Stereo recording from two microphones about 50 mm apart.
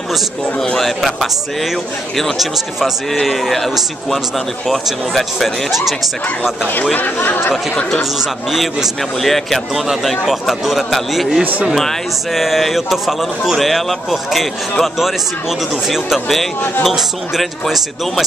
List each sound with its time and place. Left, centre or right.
0.7 s a man's voice: centre
6.8 s speech: left
7.2 s speech: left
8.0 s a man's voice: centre
9.8 s a man's voice: centre